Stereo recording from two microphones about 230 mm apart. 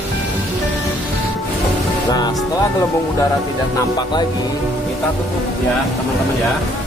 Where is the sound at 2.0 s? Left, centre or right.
Centre.